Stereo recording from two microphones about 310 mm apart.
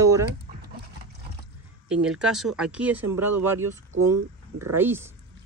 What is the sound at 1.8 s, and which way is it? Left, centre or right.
Speech, centre.